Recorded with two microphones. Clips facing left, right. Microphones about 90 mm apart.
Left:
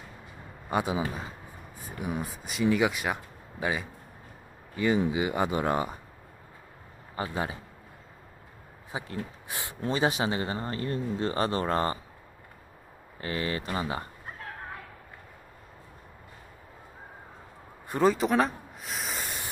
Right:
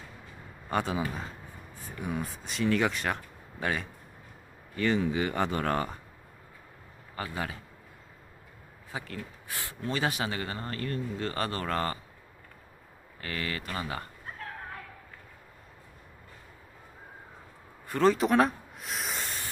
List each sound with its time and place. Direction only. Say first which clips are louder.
0.7 s a man's voice: left 2 dB; 10° left (ahead or behind)
7.2 s speech: left 3 dB; 25° left (ahead or behind)
8.9 s speech: left 3 dB; 20° left (ahead or behind)
13.2 s speech: left 4 dB; 25° left (ahead or behind)
18.0 s speech: right 1 dB; centre (ahead or behind)